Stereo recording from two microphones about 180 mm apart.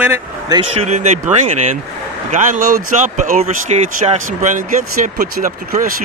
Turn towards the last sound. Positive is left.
turn(degrees=-50)  # may be behind; listen again after turning